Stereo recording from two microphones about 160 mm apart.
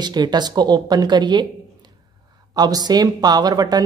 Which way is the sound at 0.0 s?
25° right (ahead or behind).